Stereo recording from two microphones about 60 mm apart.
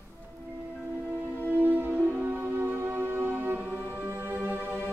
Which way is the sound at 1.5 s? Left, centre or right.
Right.